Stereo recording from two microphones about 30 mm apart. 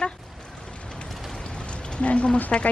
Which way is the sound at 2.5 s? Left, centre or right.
Centre.